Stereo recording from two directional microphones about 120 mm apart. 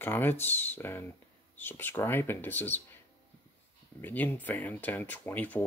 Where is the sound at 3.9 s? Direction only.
15° left (ahead or behind).